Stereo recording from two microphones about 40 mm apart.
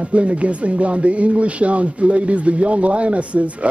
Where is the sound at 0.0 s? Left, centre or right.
Right.